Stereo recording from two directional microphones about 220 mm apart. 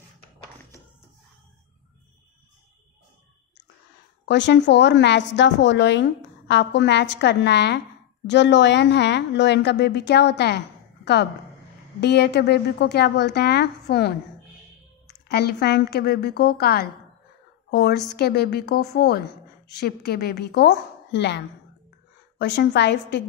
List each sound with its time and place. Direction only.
4.3 s a woman's voice: 50° left (ahead or behind)
12.0 s a woman's voice: 50° left (ahead or behind)
15.2 s a woman's voice: 45° left (ahead or behind)
22.4 s a woman's voice: 50° left (ahead or behind)